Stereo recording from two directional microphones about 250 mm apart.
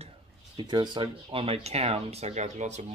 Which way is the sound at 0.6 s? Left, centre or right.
Centre.